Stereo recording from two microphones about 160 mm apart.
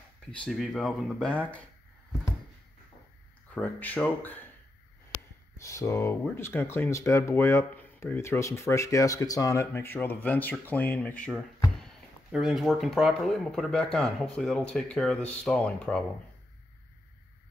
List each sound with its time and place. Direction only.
0.4 s speech: centre (ahead or behind)
3.5 s speech: 10° left (ahead or behind)
11.8 s speech: 5° right (ahead or behind)